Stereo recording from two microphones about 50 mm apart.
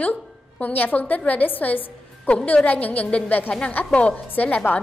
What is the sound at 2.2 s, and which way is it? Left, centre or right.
A woman's voice, left.